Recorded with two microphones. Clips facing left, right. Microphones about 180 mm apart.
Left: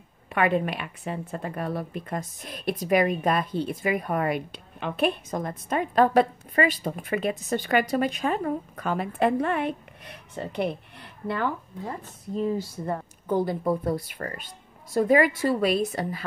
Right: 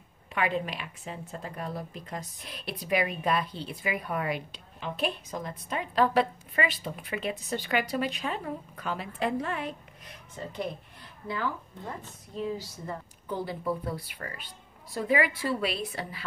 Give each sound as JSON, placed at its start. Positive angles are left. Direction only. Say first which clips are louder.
{"t": 0.3, "sound": "speech", "louder": "left 6 dB", "side_deg": 55}